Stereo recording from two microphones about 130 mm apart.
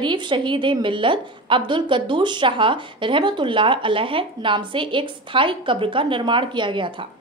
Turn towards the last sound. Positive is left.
turn(degrees=-40)  # may be behind; listen again after turning